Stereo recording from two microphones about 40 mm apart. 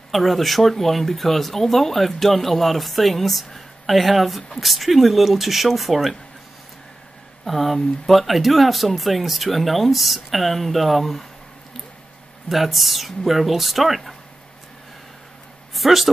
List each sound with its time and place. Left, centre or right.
0.1 s speech: centre
7.4 s speech: centre
12.4 s speech: centre
15.7 s speech: centre